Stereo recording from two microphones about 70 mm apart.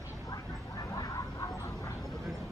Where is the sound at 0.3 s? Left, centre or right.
Left.